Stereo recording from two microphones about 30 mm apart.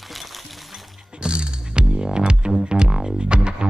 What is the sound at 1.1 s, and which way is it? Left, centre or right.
Music, right.